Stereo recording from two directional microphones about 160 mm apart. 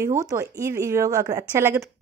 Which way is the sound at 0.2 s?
20° right (ahead or behind).